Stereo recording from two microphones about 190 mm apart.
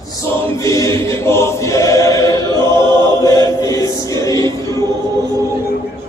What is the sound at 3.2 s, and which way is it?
Chant, 20° left (ahead or behind).